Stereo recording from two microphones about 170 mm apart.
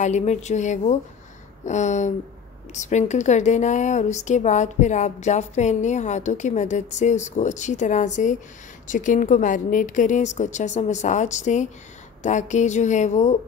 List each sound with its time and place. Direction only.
0.0 s a woman's voice: 45° left (ahead or behind)